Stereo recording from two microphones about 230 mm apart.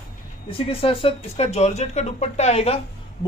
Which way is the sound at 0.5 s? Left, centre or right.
Left.